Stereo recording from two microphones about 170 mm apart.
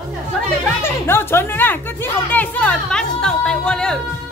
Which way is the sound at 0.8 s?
15° left (ahead or behind).